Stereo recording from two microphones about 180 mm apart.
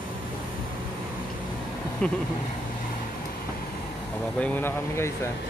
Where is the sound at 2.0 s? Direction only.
5° left (ahead or behind).